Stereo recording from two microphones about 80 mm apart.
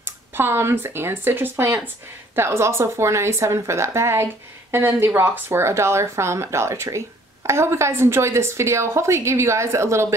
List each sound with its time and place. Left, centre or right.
0.0 s speech: right